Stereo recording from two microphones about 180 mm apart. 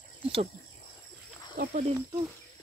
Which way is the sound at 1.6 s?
45° right (ahead or behind).